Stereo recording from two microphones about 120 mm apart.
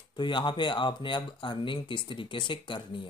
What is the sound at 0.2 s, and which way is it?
Speech, 40° left (ahead or behind).